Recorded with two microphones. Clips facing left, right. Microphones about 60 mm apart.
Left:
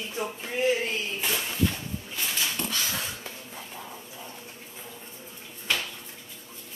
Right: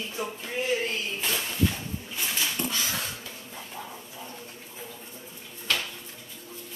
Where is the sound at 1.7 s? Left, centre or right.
Centre.